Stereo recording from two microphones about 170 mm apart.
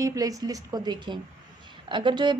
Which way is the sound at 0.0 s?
20° right (ahead or behind).